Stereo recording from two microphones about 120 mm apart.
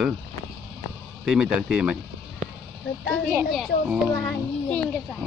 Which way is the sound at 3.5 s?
Centre (ahead or behind).